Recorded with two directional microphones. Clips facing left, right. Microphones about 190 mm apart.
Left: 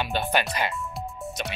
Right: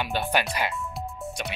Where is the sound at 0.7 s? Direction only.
Centre (ahead or behind).